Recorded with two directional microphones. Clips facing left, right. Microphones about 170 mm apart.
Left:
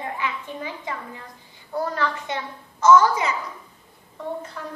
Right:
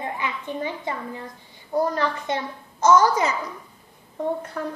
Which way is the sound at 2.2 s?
40° right (ahead or behind).